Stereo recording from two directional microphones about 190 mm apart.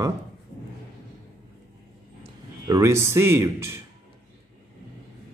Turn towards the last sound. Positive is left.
turn(degrees=-15)  # may be behind; listen again after turning